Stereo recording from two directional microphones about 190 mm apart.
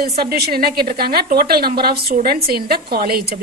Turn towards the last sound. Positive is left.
turn(degrees=-55)  # may be behind; listen again after turning